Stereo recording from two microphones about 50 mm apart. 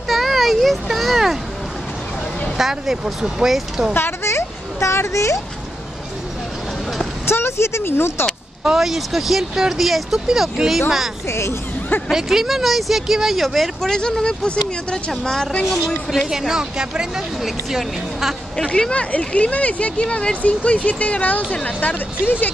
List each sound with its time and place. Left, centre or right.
0.1 s children playing: centre
2.5 s speech: centre
3.9 s a sound: left
7.2 s speech: left
8.6 s speech: centre
11.2 s speech: left
12.1 s speech: centre
13.8 s speech: centre
16.3 s speech: centre
18.8 s speech: left